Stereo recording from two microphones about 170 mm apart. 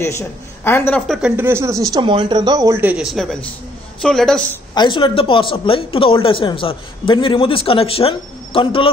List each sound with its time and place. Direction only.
0.0 s a man's voice: 15° left (ahead or behind)
1.0 s speech: centre (ahead or behind)
1.3 s speech: 15° right (ahead or behind)
2.8 s speech: 5° right (ahead or behind)
4.7 s speech: 30° left (ahead or behind)